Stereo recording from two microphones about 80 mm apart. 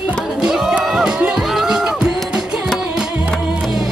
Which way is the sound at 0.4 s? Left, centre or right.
Centre.